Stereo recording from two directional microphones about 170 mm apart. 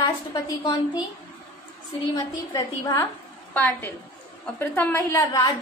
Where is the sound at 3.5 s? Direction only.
10° left (ahead or behind).